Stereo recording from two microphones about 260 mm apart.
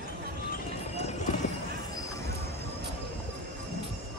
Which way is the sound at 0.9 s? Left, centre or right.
Left.